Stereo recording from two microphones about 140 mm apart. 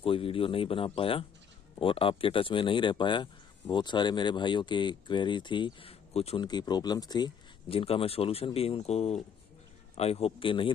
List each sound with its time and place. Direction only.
0.0 s speech: 40° left (ahead or behind)
6.4 s a man's voice: 30° left (ahead or behind)